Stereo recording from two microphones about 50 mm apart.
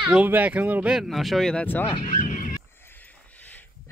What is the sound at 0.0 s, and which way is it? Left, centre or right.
Speech, right.